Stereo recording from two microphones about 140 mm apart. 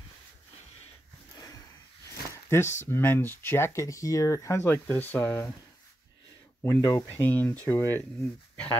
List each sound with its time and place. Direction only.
2.9 s speech: 15° left (ahead or behind)
6.6 s speech: 20° left (ahead or behind)